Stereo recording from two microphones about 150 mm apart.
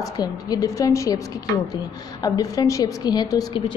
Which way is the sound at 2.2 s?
25° left (ahead or behind).